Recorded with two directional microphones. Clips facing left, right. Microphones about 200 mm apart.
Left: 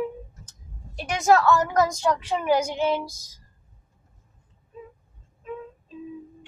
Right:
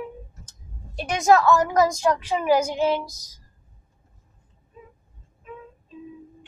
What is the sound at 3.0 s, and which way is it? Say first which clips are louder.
Speech: left 3 dB; 25° left (ahead or behind).